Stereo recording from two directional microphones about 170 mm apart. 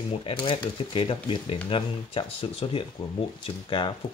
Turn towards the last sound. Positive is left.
turn(degrees=30)  # may be behind; listen again after turning